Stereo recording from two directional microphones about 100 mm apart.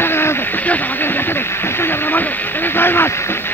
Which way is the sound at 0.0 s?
25° left (ahead or behind).